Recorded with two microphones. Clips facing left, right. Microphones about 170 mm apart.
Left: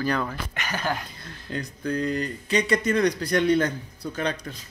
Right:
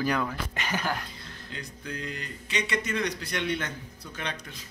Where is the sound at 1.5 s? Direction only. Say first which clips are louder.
Left 11 dB; 40° left (ahead or behind).